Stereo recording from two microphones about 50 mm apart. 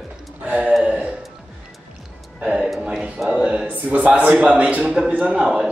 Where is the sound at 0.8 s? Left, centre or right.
Right.